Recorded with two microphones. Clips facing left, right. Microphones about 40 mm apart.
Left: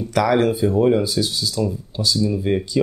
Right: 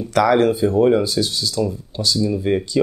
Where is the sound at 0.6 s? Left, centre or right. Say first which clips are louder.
Right 2 dB; centre.